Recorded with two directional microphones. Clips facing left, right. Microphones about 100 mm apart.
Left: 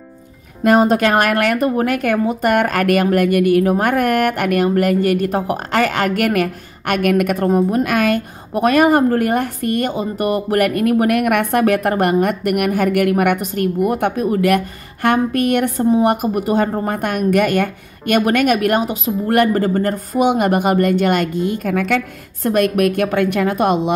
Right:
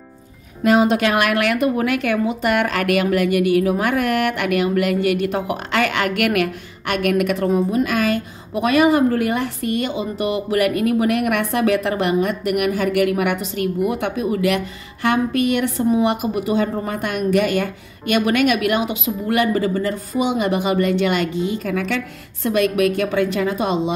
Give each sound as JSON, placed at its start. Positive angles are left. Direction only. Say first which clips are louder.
{"t": 0.7, "sound": "a woman's voice", "louder": "left 3 dB", "side_deg": 45}